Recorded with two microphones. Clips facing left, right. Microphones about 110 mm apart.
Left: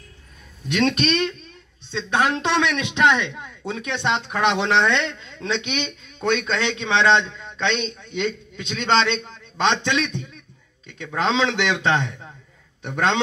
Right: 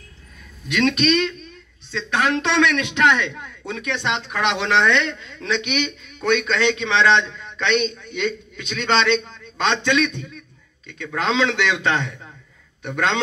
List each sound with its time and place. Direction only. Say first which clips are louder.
0.7 s a man's voice: right 2 dB; 35° left (ahead or behind)